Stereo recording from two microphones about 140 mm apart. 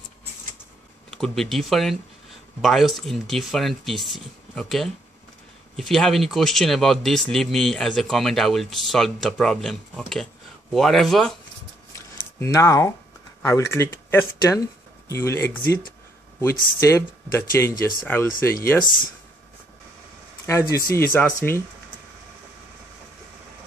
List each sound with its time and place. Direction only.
1.1 s speech: 5° left (ahead or behind)
11.9 s a sound: 20° left (ahead or behind)
13.4 s speech: 20° left (ahead or behind)
20.4 s speech: 25° left (ahead or behind)